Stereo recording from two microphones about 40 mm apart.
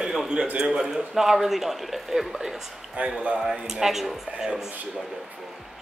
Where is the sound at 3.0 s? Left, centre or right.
Right.